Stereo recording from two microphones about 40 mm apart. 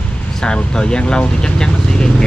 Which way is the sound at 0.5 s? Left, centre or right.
Left.